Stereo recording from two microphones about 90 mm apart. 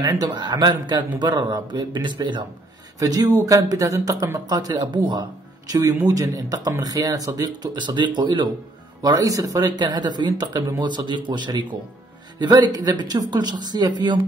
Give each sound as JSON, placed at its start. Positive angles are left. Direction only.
{"t": 0.0, "sound": "a man's voice", "side_deg": -50}
{"t": 3.0, "sound": "speech", "side_deg": -45}
{"t": 5.7, "sound": "speech", "side_deg": -40}
{"t": 9.0, "sound": "a man's voice", "side_deg": -45}